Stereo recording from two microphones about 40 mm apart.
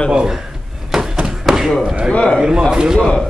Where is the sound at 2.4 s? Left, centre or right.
Centre.